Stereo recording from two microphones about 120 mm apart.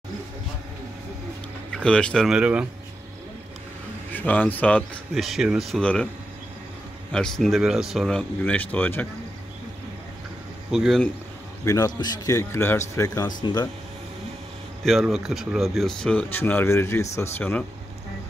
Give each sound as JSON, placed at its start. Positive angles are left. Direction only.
{"t": 1.7, "sound": "speech", "side_deg": 10}
{"t": 2.3, "sound": "speech", "side_deg": -10}
{"t": 4.1, "sound": "speech", "side_deg": 15}
{"t": 5.1, "sound": "speech", "side_deg": 0}
{"t": 7.1, "sound": "speech", "side_deg": 5}
{"t": 8.2, "sound": "speech", "side_deg": 15}
{"t": 10.7, "sound": "speech", "side_deg": -5}
{"t": 11.6, "sound": "speech", "side_deg": 30}
{"t": 12.4, "sound": "speech", "side_deg": 20}
{"t": 14.9, "sound": "speech", "side_deg": 0}